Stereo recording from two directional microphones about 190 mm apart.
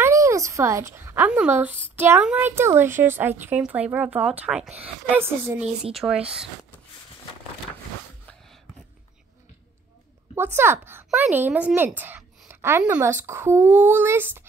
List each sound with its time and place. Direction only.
0.0 s speech: 15° right (ahead or behind)
10.3 s speech: 10° right (ahead or behind)